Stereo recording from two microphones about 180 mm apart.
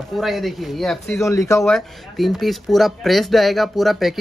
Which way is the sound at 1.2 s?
15° left (ahead or behind).